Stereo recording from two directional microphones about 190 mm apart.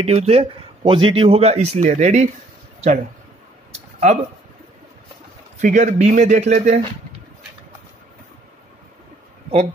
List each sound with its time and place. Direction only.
0.0 s speech: 35° right (ahead or behind)
3.7 s a sound: 35° right (ahead or behind)
5.6 s speech: 45° right (ahead or behind)